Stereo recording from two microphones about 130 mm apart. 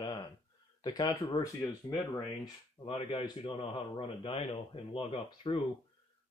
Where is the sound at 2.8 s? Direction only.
40° left (ahead or behind).